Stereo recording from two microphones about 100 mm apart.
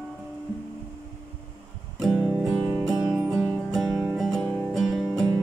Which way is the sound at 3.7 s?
5° right (ahead or behind).